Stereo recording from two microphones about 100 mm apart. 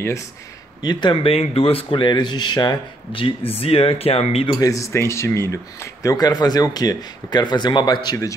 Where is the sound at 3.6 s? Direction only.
75° left (ahead or behind).